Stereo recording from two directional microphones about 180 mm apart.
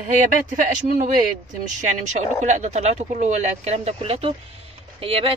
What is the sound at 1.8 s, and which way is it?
Speech, 40° right (ahead or behind).